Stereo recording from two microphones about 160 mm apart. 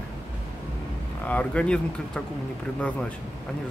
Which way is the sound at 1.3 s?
10° left (ahead or behind).